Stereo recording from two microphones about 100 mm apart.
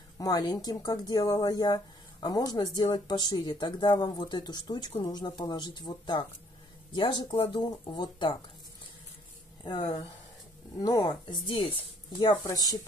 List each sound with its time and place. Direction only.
0.2 s speech: 40° left (ahead or behind)
10.8 s speech: 40° left (ahead or behind)
11.4 s speech: 60° left (ahead or behind)
12.4 s speech: 40° left (ahead or behind)